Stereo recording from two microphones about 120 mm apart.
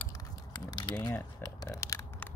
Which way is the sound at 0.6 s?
35° left (ahead or behind).